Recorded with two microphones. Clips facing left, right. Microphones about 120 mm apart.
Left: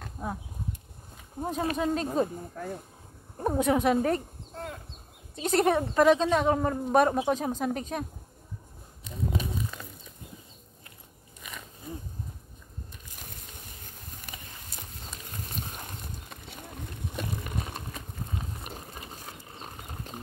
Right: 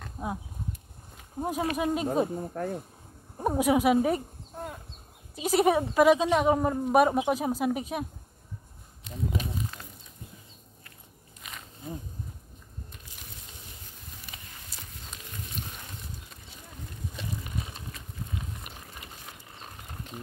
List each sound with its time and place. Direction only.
0.2 s speech: 10° right (ahead or behind)
1.4 s a woman's voice: 10° right (ahead or behind)
2.6 s speech: 50° right (ahead or behind)
3.3 s a woman's voice: 10° right (ahead or behind)
13.1 s a sound: 50° left (ahead or behind)
14.3 s horse: 50° left (ahead or behind)
15.4 s a sound: 45° left (ahead or behind)
16.3 s a sound: 60° left (ahead or behind)
18.6 s ratchet: 35° left (ahead or behind)